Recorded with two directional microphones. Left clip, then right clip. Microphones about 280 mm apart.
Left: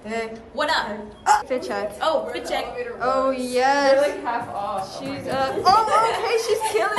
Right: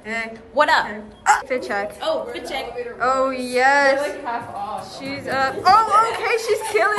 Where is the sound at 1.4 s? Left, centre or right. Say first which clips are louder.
Right 2 dB; centre.